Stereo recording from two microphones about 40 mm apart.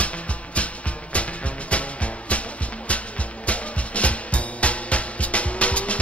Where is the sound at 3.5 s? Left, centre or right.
Left.